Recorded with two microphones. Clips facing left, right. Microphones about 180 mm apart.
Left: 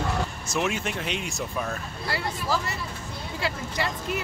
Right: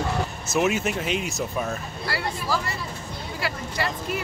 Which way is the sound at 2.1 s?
20° left (ahead or behind).